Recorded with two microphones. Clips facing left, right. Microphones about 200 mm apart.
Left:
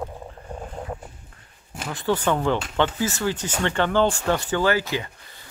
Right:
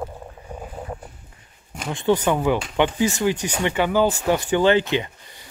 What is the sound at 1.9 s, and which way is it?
Speech, 20° right (ahead or behind).